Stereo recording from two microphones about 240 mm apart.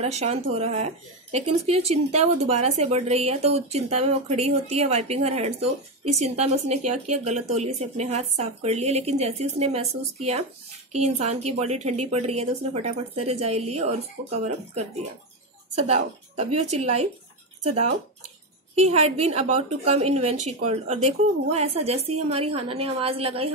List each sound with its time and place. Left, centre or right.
0.0 s a woman's voice: right
18.8 s a woman's voice: right